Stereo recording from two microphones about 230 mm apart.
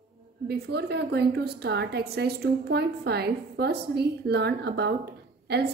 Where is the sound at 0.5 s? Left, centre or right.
Right.